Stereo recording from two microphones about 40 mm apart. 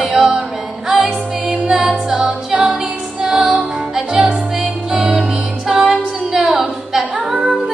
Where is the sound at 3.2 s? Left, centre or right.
Centre.